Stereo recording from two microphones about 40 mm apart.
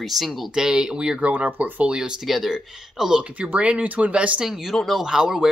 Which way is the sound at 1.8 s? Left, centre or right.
Right.